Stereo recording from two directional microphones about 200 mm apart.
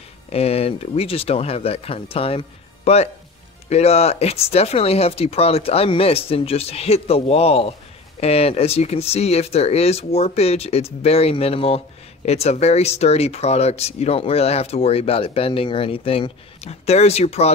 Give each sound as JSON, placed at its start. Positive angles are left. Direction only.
{"t": 0.3, "sound": "speech", "side_deg": 30}